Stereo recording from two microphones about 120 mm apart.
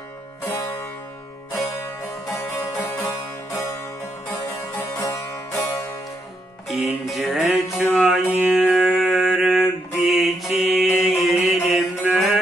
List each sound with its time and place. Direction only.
0.5 s music: 20° left (ahead or behind)
2.3 s music: 20° left (ahead or behind)
4.7 s music: 15° left (ahead or behind)
6.7 s music: centre (ahead or behind)
11.2 s mantra: centre (ahead or behind)